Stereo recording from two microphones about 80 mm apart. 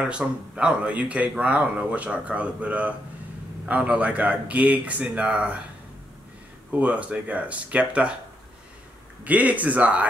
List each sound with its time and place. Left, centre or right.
0.0 s a man's voice: centre
6.7 s speech: centre
9.2 s speech: centre